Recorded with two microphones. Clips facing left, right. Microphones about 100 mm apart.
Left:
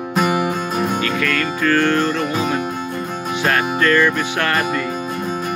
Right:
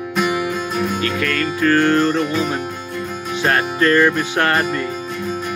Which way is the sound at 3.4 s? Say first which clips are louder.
Right 1 dB; 10° right (ahead or behind).